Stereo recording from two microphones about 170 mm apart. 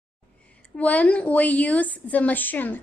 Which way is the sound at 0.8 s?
10° left (ahead or behind).